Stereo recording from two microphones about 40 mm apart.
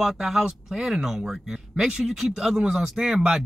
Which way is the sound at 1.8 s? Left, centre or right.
Right.